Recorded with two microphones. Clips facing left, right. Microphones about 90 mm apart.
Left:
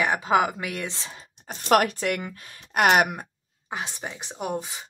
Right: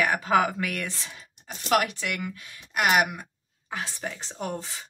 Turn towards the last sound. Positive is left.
turn(degrees=15)  # may be behind; listen again after turning